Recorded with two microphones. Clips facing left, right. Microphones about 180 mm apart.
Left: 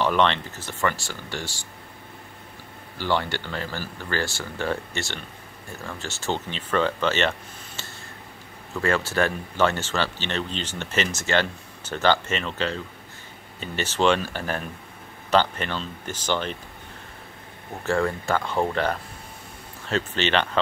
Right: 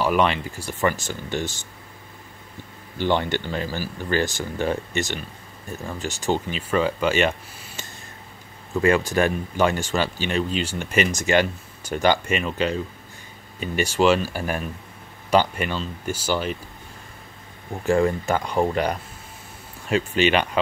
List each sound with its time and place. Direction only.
0.0 s speech: 10° right (ahead or behind)
3.0 s speech: 20° right (ahead or behind)
17.8 s speech: 15° right (ahead or behind)